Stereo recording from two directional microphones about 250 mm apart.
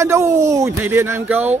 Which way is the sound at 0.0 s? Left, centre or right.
Centre.